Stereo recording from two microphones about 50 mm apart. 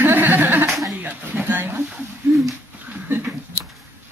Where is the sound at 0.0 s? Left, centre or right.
Right.